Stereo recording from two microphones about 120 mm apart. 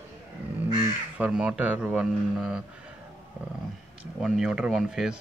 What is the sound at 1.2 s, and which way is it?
Speech, 10° right (ahead or behind).